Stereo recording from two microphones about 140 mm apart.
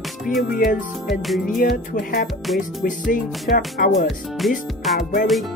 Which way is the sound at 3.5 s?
90° left.